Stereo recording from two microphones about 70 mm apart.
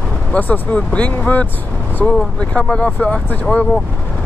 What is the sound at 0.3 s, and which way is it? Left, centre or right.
Speech, left.